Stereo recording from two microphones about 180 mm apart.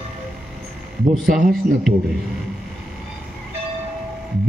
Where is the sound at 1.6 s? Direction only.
40° right (ahead or behind).